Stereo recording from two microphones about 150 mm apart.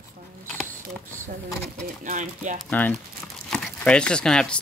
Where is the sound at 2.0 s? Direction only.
55° right (ahead or behind).